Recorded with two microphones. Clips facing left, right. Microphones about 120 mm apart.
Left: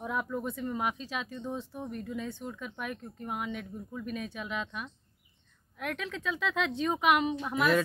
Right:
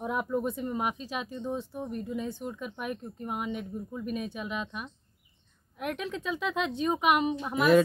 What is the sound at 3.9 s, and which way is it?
Speech, 15° right (ahead or behind).